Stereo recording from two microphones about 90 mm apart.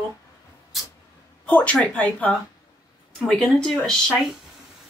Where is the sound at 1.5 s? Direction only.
15° left (ahead or behind).